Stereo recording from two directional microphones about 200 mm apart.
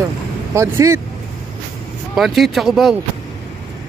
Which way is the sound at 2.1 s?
Centre (ahead or behind).